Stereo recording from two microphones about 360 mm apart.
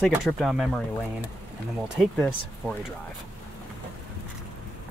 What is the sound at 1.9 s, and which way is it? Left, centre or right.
Speech, centre.